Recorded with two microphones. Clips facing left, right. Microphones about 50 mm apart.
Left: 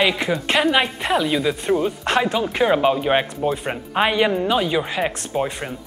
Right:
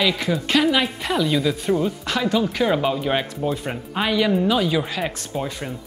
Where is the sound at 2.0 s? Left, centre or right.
Left.